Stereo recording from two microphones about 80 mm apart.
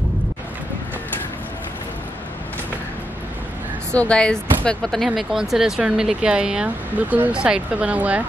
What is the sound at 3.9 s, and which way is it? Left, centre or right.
Speech, centre.